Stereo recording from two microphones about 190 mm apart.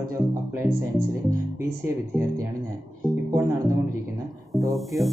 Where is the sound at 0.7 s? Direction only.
50° right (ahead or behind).